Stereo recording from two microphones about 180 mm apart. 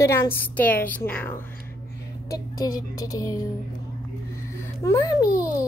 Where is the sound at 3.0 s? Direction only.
20° left (ahead or behind).